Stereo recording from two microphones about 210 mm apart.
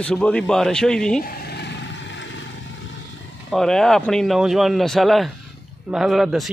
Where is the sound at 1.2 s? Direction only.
50° left (ahead or behind).